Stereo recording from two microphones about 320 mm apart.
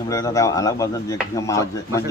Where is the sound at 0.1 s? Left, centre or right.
Centre.